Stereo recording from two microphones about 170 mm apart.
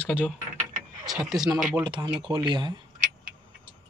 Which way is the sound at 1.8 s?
30° right (ahead or behind).